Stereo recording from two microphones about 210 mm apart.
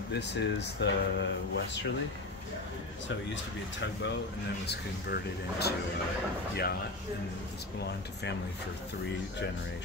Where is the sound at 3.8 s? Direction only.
60° left (ahead or behind).